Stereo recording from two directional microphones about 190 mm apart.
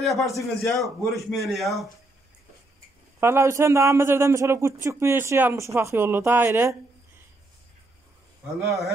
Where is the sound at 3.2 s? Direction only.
15° right (ahead or behind).